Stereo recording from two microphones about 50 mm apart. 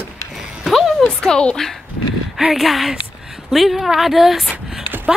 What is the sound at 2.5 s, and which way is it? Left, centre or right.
Speech, centre.